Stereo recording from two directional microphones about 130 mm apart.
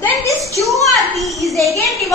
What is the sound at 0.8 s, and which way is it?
Speech, centre (ahead or behind).